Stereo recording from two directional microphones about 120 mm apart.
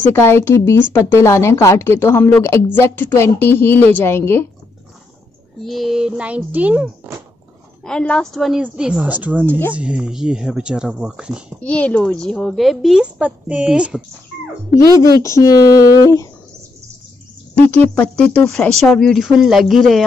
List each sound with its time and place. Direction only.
0.1 s speech: 20° left (ahead or behind)
5.6 s speech: centre (ahead or behind)
7.8 s speech: 5° left (ahead or behind)
11.6 s speech: 10° left (ahead or behind); by 14.0 s 5° right (ahead or behind)
15.0 s speech: 25° left (ahead or behind)
17.6 s speech: 15° left (ahead or behind)